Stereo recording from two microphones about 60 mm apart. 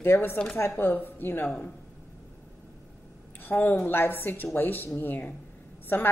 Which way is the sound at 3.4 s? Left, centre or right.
Left.